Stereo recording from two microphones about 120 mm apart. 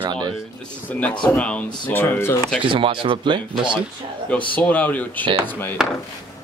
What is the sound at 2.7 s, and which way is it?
Speech, 45° right (ahead or behind).